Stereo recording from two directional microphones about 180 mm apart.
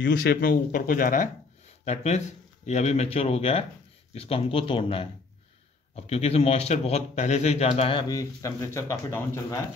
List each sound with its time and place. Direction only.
0.0 s a man's voice: 60° left (ahead or behind); by 9.6 s 15° left (ahead or behind)